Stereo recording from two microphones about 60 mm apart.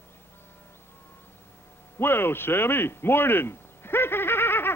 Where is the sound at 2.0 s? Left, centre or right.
Left.